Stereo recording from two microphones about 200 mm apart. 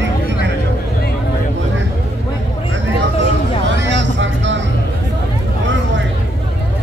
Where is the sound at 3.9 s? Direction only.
65° right (ahead or behind).